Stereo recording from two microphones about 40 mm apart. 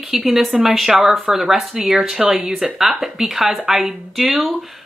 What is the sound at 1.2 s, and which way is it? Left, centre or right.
Speech, right.